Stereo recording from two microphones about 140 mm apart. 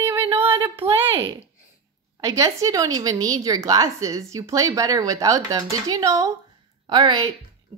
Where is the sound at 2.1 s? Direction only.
20° right (ahead or behind).